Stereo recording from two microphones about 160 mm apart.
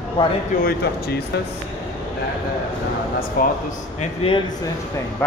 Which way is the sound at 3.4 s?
65° left (ahead or behind).